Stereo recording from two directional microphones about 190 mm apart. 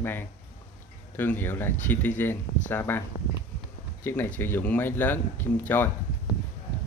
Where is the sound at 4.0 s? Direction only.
10° left (ahead or behind).